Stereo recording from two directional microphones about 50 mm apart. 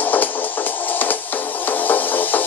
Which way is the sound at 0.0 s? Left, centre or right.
Left.